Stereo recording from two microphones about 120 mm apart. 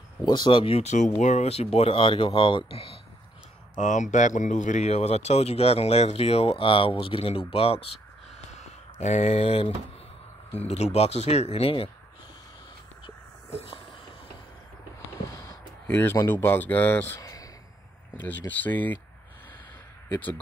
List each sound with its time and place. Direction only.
0.2 s speech: 35° left (ahead or behind)
0.8 s speech: 90° left
1.2 s speech: 70° left (ahead or behind); by 3.0 s 50° left (ahead or behind)
3.7 s speech: 90° left; by 8.0 s 55° left (ahead or behind)
8.5 s a sound: 75° left (ahead or behind)
9.0 s speech: 70° left (ahead or behind); by 11.9 s 50° left (ahead or behind)
13.0 s a sound: 55° left (ahead or behind)
15.2 s a sound: 25° left (ahead or behind)
16.3 s speech: 20° left (ahead or behind)
17.2 s a sound: 30° left (ahead or behind)
18.5 s speech: 15° left (ahead or behind)
20.1 s speech: 15° left (ahead or behind)